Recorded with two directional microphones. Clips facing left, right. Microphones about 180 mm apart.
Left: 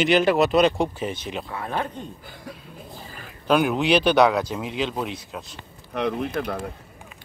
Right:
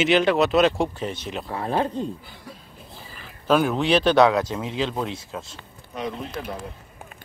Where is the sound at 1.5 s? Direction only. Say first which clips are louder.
Right 6 dB; 30° right (ahead or behind).